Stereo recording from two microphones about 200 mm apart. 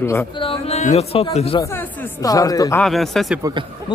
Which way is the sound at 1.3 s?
30° left (ahead or behind).